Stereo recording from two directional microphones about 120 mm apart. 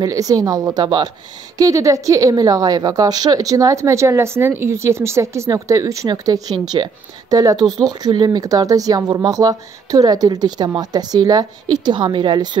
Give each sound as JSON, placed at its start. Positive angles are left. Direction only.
{"t": 0.0, "sound": "a woman's voice", "side_deg": -30}